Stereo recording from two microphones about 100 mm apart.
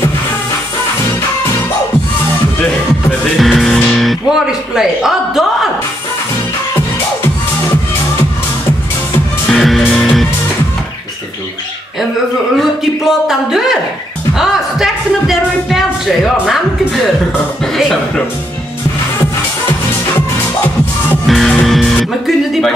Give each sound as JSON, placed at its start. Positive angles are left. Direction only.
{"t": 3.3, "sound": "speech", "side_deg": 0}
{"t": 9.5, "sound": "music", "side_deg": 0}
{"t": 12.5, "sound": "speech", "side_deg": -5}
{"t": 14.4, "sound": "music", "side_deg": -5}
{"t": 17.7, "sound": "speech", "side_deg": 0}
{"t": 21.3, "sound": "music", "side_deg": 0}